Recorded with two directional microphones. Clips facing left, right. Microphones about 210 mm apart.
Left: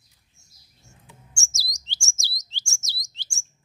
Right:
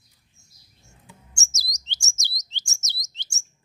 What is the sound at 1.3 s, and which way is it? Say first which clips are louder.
Chirp: even; 20° right (ahead or behind).